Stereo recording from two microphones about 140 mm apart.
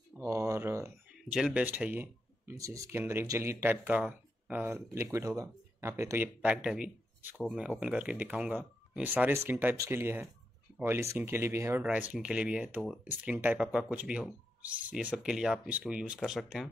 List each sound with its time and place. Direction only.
0.2 s a sound: 20° right (ahead or behind)
1.3 s speech: 5° right (ahead or behind)
11.8 s speech: 10° right (ahead or behind)